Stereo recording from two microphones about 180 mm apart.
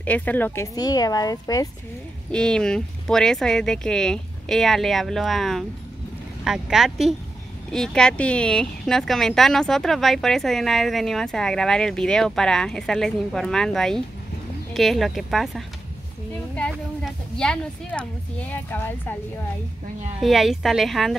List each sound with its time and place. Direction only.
0.0 s speech: 10° left (ahead or behind)
0.7 s speech: 20° left (ahead or behind)
2.3 s speech: 5° left (ahead or behind)
20.2 s speech: centre (ahead or behind)